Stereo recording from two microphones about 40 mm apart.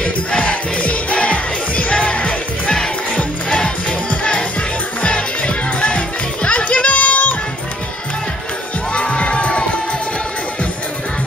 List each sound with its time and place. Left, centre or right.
0.0 s music: left
8.9 s music: left